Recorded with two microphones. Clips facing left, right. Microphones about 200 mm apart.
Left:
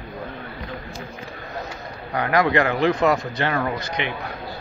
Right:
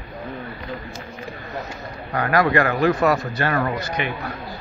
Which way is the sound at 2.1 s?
15° left (ahead or behind).